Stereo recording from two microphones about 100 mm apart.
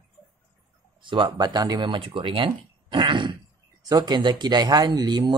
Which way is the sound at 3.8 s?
40° right (ahead or behind).